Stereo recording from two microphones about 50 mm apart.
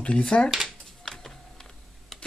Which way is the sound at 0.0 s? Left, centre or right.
Centre.